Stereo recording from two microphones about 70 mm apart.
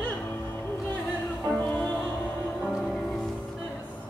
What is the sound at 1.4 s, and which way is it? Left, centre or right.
Music, left.